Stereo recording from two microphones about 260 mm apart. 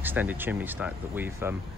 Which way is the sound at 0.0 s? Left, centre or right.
Centre.